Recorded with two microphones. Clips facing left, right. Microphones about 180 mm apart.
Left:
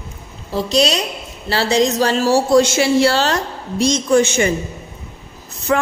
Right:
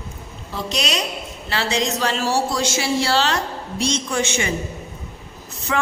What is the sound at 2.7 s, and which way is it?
A woman's voice, 60° left (ahead or behind).